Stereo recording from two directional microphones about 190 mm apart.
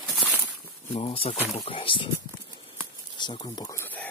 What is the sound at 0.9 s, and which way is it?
Speech, 30° left (ahead or behind).